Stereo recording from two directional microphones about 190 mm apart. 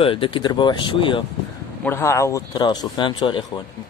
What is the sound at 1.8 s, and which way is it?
Speech, 15° left (ahead or behind).